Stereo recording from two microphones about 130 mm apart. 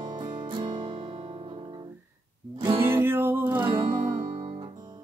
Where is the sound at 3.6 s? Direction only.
35° right (ahead or behind).